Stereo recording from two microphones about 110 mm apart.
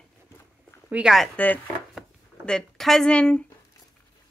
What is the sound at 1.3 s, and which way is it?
Speech, 15° left (ahead or behind).